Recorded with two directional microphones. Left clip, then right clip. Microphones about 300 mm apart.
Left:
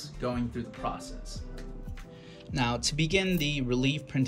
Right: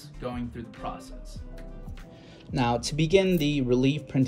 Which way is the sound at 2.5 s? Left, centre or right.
Centre.